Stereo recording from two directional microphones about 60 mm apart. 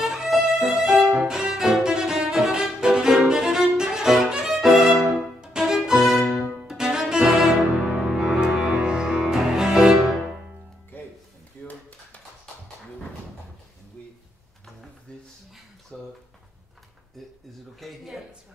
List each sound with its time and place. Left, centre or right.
0.0 s violin: centre
1.2 s music: centre
5.4 s violin: centre
6.7 s music: centre
11.6 s dishes: left
15.9 s a sound: centre
17.7 s a sound: centre